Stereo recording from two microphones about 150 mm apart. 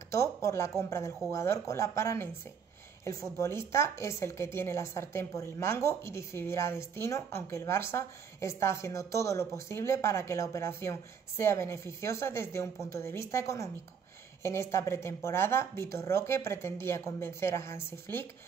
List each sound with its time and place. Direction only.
0.1 s a woman's voice: 20° left (ahead or behind)